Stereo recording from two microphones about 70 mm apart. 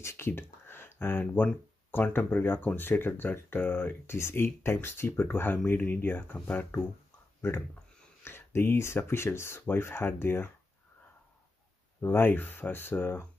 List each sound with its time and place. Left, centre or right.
0.0 s a sound: left
1.2 s speech: left
8.2 s speech: left
12.0 s speech: left